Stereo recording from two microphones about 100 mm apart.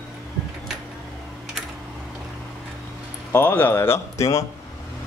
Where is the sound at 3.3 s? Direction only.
20° left (ahead or behind).